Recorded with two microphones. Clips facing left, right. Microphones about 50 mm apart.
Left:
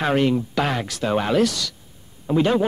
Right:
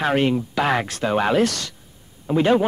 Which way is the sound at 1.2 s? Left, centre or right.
Right.